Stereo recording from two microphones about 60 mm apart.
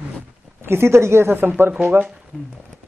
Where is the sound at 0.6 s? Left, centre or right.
Right.